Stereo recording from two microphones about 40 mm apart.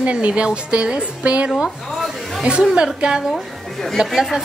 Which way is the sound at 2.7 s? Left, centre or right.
Right.